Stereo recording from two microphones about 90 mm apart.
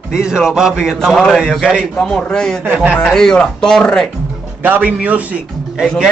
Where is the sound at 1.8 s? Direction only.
10° left (ahead or behind).